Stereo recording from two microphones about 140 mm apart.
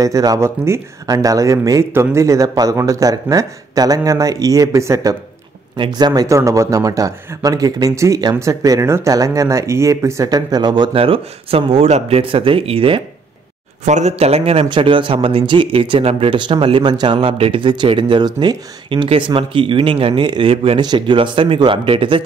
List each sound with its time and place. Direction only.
0.0 s speech: 25° right (ahead or behind); by 13.0 s 40° right (ahead or behind)
13.8 s speech: 55° right (ahead or behind); by 22.2 s 40° right (ahead or behind)